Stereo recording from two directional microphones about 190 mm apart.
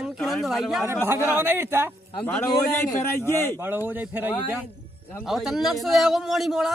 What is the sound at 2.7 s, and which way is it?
Speech, 10° left (ahead or behind).